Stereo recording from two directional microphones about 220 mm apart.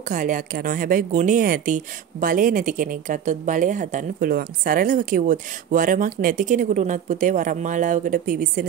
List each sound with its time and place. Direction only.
0.1 s a woman's voice: 40° right (ahead or behind)